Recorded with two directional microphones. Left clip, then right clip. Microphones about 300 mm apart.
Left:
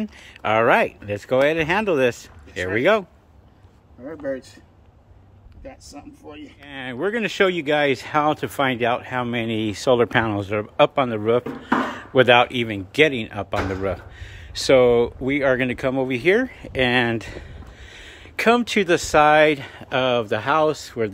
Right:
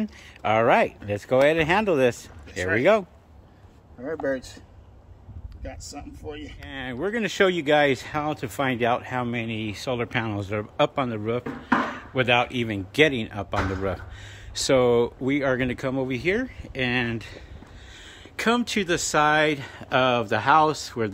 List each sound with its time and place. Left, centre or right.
0.0 s speech: centre
4.0 s speech: centre
5.6 s speech: centre
6.6 s speech: centre